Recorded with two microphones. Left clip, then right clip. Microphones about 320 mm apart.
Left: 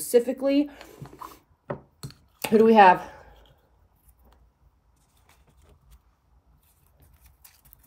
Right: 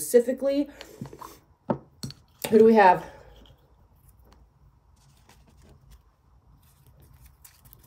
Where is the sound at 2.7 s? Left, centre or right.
Left.